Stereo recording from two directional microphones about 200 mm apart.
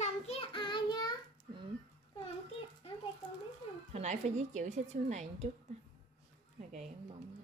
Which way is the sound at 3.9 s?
35° right (ahead or behind).